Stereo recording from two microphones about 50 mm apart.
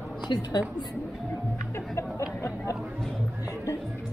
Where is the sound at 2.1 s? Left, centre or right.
Left.